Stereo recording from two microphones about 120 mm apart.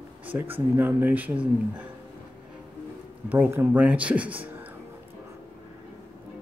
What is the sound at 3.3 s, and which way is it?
A man's voice, 20° right (ahead or behind).